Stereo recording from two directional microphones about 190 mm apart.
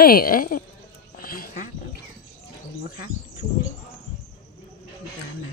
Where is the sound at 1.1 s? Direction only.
50° left (ahead or behind).